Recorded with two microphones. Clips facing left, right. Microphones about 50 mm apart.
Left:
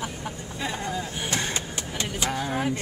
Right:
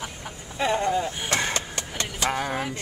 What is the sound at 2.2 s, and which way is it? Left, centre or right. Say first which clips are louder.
Speech: right 4 dB; right.